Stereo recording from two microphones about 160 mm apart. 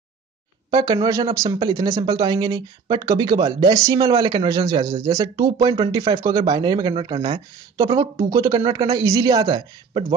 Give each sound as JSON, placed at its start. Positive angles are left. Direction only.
{"t": 0.7, "sound": "speech", "side_deg": -25}
{"t": 8.3, "sound": "speech", "side_deg": -20}